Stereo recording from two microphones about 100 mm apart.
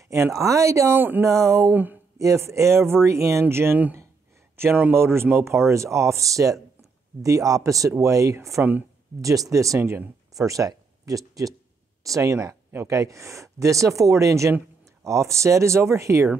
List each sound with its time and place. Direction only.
0.0 s speech: 30° right (ahead or behind)
1.3 s speech: 30° right (ahead or behind)
1.7 s speech: 20° right (ahead or behind)
2.1 s speech: 30° right (ahead or behind)